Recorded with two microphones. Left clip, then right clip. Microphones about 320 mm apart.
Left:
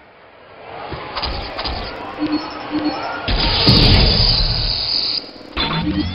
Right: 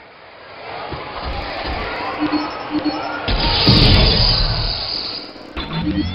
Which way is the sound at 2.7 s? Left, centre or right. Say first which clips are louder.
Left 1 dB; centre.